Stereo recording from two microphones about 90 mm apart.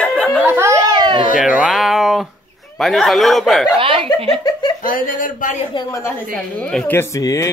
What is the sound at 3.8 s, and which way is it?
Chuckle, 90° right.